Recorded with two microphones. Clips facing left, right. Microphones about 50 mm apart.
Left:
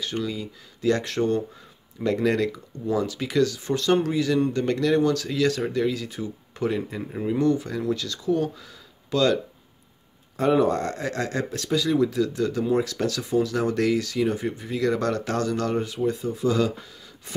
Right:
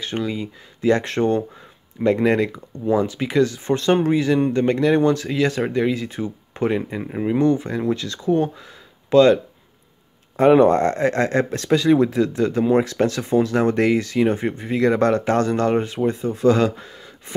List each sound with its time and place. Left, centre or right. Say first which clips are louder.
0.0 s speech: right 4 dB; right
10.3 s speech: right 7 dB; right
16.3 s speech: right 9 dB; right
17.3 s speech: right 6 dB; right